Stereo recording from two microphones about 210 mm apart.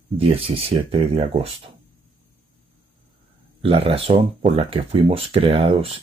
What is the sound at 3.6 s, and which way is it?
Speech, 25° right (ahead or behind).